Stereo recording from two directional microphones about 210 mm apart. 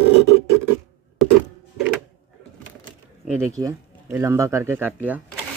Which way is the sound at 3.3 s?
15° right (ahead or behind).